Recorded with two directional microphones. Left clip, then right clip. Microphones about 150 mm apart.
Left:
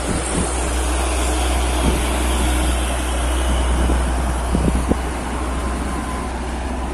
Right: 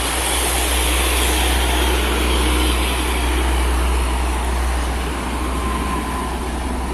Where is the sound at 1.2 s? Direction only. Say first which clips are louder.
Right 3 dB; 90° left.